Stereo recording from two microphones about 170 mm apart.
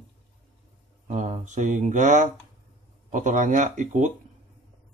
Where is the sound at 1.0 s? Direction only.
40° right (ahead or behind).